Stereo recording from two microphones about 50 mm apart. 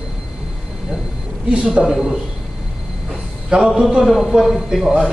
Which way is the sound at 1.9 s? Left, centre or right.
Centre.